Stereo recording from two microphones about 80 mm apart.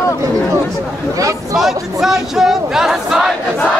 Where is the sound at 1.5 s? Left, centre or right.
Centre.